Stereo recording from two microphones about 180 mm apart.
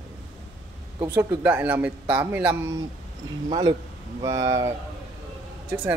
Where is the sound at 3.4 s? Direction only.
25° right (ahead or behind).